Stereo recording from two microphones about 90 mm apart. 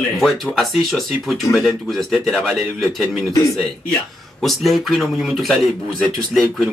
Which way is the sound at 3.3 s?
35° left (ahead or behind).